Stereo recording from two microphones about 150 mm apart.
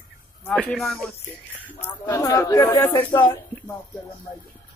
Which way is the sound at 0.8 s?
Centre (ahead or behind).